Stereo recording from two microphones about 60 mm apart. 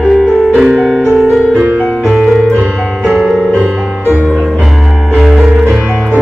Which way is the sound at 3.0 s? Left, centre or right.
Centre.